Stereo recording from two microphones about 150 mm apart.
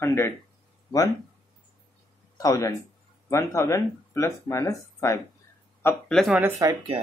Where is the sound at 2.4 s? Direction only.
20° left (ahead or behind).